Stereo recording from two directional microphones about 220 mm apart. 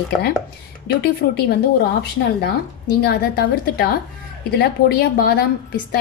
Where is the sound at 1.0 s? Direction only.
45° left (ahead or behind).